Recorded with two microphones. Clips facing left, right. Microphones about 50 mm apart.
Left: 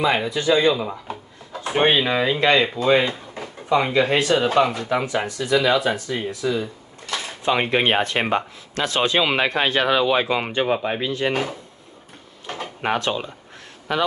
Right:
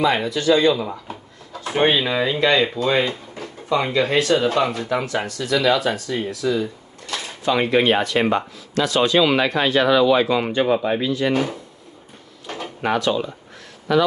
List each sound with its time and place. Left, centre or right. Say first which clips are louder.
0.0 s speech: right 1 dB; centre
1.8 s speech: even; centre
3.1 s drawer open or close: right 1 dB; left
3.7 s speech: left 1 dB; centre
4.6 s speech: even; centre; by 11.0 s left
11.0 s speech: right 2 dB; left
12.5 s drawer open or close: right 2 dB; left
13.9 s speech: right 5 dB; left